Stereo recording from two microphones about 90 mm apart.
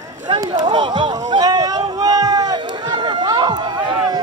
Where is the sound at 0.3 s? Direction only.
65° right (ahead or behind).